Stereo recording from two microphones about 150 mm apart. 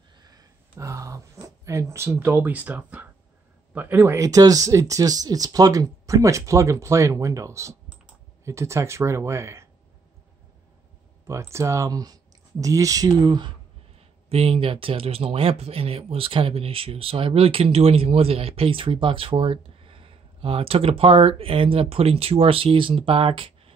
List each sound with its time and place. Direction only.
0.2 s a sound: 25° right (ahead or behind); by 3.1 s 10° right (ahead or behind)
3.7 s speech: 15° right (ahead or behind)
11.2 s speech: 20° right (ahead or behind); by 23.7 s 35° right (ahead or behind)